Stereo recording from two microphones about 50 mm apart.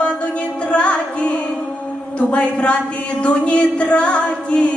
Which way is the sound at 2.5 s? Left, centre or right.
Left.